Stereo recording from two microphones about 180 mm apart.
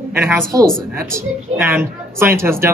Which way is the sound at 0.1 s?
15° right (ahead or behind).